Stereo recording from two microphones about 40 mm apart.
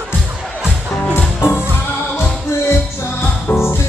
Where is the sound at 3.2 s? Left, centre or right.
Left.